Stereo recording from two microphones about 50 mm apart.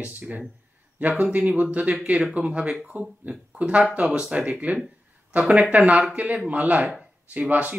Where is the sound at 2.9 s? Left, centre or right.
Right.